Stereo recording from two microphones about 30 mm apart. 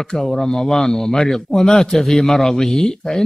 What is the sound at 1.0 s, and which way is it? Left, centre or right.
Speech, left.